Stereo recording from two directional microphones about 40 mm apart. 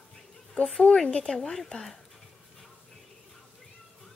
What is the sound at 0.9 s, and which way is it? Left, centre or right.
Speech, centre.